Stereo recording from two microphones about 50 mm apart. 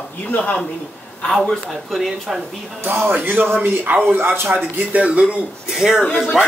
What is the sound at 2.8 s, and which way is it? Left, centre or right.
Speech, right.